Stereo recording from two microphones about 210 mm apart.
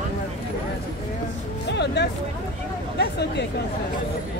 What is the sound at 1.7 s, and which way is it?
Music, 55° left (ahead or behind).